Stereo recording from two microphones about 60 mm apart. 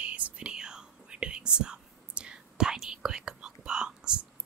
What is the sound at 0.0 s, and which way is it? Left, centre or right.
Whispering, right.